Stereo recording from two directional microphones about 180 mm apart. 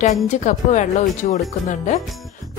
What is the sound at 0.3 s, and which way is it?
A woman's voice, 45° left (ahead or behind).